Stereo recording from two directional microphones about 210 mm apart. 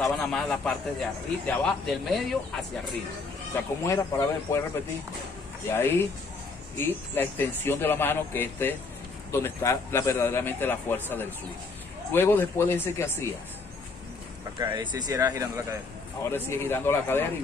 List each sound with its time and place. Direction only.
0.0 s a man's voice: centre (ahead or behind)
3.8 s a man's voice: 15° left (ahead or behind)
5.7 s a man's voice: 10° left (ahead or behind)
14.6 s speech: 20° right (ahead or behind)
16.3 s a man's voice: 10° left (ahead or behind)